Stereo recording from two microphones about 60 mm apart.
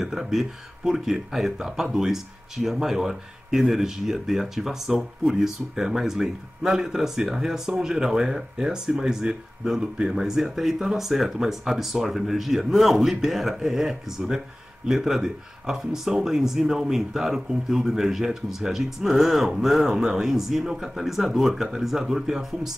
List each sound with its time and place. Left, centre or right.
0.0 s speech: centre